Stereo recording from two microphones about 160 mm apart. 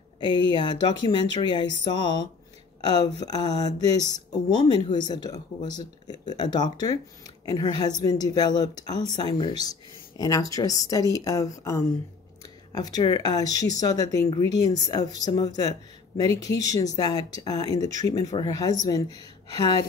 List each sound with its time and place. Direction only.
0.2 s a woman's voice: 25° left (ahead or behind)